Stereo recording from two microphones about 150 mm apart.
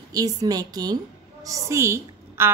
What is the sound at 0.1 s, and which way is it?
A woman's voice, 25° right (ahead or behind).